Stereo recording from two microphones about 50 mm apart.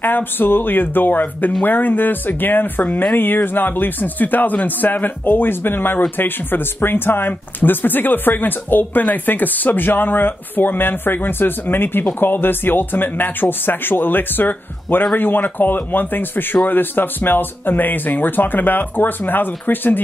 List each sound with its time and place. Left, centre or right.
0.0 s speech: left